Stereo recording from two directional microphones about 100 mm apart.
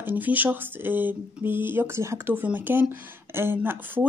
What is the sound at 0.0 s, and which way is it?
Speech, 15° right (ahead or behind).